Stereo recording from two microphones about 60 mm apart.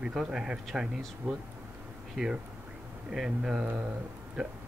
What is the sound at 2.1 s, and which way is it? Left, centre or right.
Speech, centre.